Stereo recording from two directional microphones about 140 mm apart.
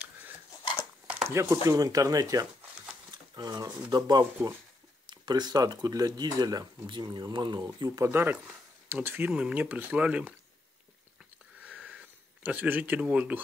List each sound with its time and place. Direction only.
1.3 s speech: 20° right (ahead or behind)
3.1 s a sound: 30° right (ahead or behind)
3.9 s speech: 30° right (ahead or behind); by 10.3 s 10° right (ahead or behind)
12.4 s speech: 10° right (ahead or behind)